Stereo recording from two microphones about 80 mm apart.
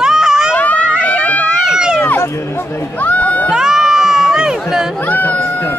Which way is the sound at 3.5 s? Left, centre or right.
Centre.